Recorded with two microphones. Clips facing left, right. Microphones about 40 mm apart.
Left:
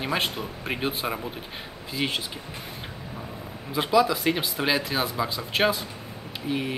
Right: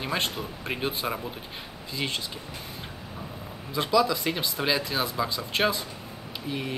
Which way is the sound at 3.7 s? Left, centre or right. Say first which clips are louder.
Left 2 dB; centre.